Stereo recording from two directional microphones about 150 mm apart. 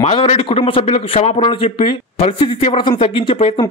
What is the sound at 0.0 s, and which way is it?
A man's voice, 40° left (ahead or behind).